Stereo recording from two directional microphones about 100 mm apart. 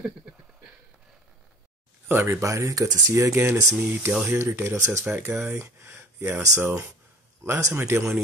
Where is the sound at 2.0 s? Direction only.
20° right (ahead or behind).